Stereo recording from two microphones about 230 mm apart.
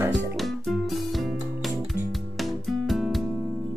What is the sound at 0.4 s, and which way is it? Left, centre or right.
Music, centre.